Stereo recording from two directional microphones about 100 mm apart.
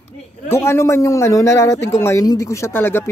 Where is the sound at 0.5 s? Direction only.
25° left (ahead or behind).